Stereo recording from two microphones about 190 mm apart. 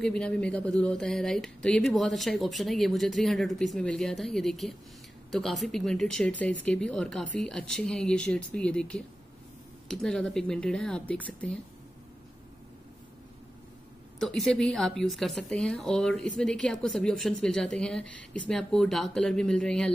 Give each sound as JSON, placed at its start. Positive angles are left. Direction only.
{"t": 0.0, "sound": "speech", "side_deg": 5}
{"t": 14.2, "sound": "speech", "side_deg": 0}